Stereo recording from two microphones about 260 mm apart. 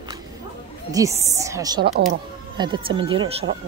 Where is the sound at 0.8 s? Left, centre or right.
Centre.